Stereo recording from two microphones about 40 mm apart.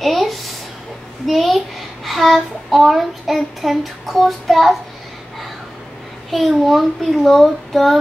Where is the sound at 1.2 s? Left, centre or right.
Centre.